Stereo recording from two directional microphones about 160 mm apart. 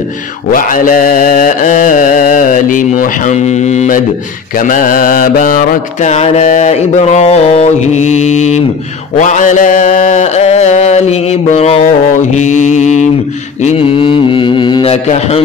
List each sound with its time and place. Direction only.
0.5 s mantra: 60° left (ahead or behind)
4.6 s mantra: 55° left (ahead or behind)
6.1 s a sound: 45° left (ahead or behind)
13.6 s mantra: 35° left (ahead or behind)